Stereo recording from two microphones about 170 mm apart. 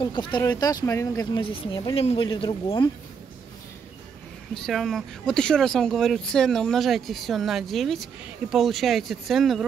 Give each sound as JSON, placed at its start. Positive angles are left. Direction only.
{"t": 0.0, "sound": "speech", "side_deg": 25}
{"t": 4.6, "sound": "speech", "side_deg": 0}